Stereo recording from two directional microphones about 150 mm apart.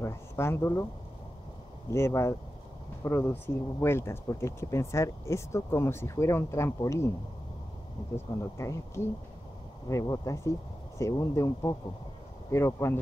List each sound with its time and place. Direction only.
0.0 s speech: 15° left (ahead or behind)
1.9 s speech: 20° left (ahead or behind)
8.4 s speech: 20° left (ahead or behind)